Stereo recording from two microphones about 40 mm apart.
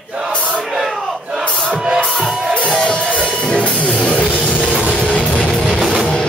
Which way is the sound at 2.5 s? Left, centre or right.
Left.